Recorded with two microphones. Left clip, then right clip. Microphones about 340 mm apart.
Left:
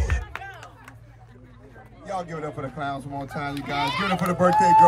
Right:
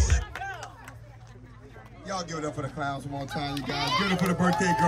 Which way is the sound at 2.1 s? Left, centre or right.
Left.